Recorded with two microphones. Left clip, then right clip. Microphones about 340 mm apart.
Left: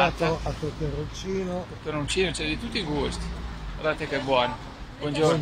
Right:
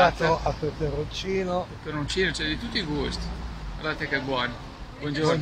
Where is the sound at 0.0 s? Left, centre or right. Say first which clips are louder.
Right 3 dB; right.